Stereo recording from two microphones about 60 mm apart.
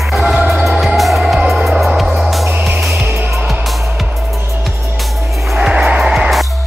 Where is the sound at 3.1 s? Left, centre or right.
Right.